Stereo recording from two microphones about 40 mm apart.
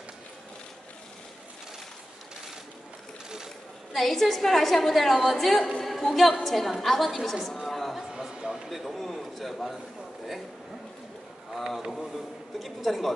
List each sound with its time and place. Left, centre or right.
3.9 s a woman's voice: centre
7.4 s chatter: centre
8.0 s a sound: centre
8.6 s a man's voice: centre
11.6 s a man's voice: centre